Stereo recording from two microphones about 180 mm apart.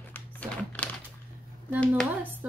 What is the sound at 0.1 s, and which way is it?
Crumpling, 10° left (ahead or behind).